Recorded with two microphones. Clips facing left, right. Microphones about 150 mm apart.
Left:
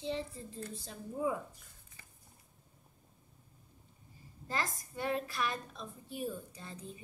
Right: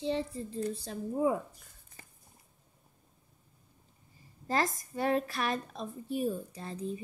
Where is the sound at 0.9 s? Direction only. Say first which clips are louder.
Right 5 dB; 45° right (ahead or behind).